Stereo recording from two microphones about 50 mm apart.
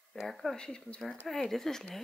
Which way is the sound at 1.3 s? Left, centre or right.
Centre.